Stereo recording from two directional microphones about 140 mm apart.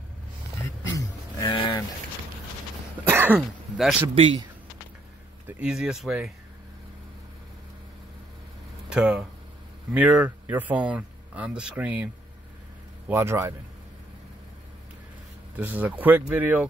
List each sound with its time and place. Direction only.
0.9 s a sound: 35° left (ahead or behind)
3.1 s throat clearing: 15° right (ahead or behind)
3.3 s speech: 5° right (ahead or behind)
4.1 s speech: 40° right (ahead or behind)
5.6 s speech: 5° right (ahead or behind)
8.8 s speech: 5° right (ahead or behind)
13.1 s speech: 15° right (ahead or behind)
15.5 s speech: 10° right (ahead or behind)